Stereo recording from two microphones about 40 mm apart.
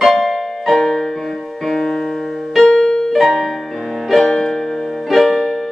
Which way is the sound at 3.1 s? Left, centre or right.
Centre.